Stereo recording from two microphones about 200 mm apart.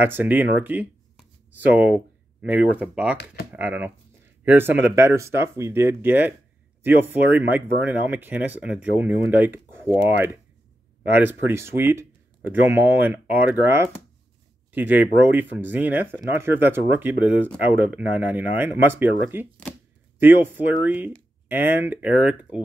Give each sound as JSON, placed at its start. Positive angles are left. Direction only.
{"t": 0.0, "sound": "speech", "side_deg": -10}